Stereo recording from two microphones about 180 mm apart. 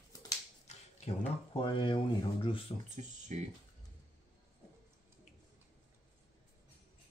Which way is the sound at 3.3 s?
40° right (ahead or behind).